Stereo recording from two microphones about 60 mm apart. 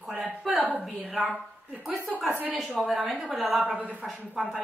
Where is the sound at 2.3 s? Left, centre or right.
Right.